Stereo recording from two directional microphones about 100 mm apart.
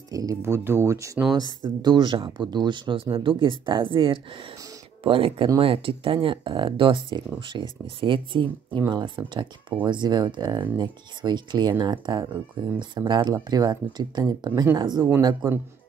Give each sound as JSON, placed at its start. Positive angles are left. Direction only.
{"t": 0.1, "sound": "speech", "side_deg": -35}
{"t": 1.3, "sound": "speech", "side_deg": -45}